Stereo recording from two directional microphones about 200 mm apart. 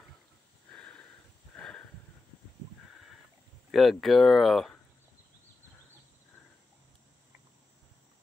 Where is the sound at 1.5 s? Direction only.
5° left (ahead or behind).